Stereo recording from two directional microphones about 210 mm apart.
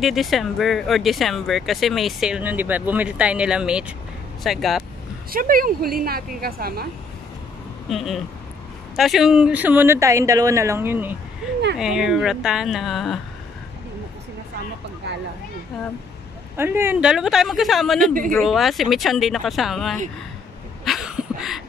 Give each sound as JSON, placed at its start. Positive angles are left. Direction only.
{"t": 0.0, "sound": "speech", "side_deg": 0}
{"t": 5.3, "sound": "a woman's voice", "side_deg": -40}
{"t": 7.9, "sound": "speech", "side_deg": 0}
{"t": 16.5, "sound": "speech", "side_deg": -10}
{"t": 20.8, "sound": "a sound", "side_deg": 0}